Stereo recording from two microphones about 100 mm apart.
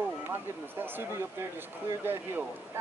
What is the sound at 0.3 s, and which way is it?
Speech, 20° right (ahead or behind).